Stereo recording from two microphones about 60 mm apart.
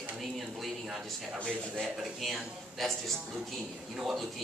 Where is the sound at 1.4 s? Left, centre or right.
Centre.